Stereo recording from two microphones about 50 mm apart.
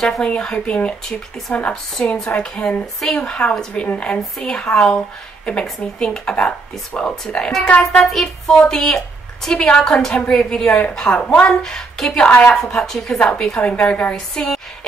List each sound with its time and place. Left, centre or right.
0.2 s a woman's voice: centre
2.1 s a woman's voice: centre
4.4 s a woman's voice: centre
11.4 s a woman's voice: centre
12.3 s speech: left
12.7 s a woman's voice: centre; by 14.1 s left
14.1 s a woman's voice: centre